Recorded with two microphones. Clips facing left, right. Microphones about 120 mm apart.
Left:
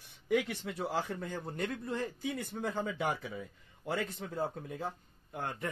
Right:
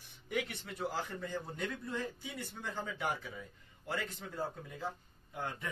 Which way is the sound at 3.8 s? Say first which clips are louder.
Left 4 dB; 65° left (ahead or behind).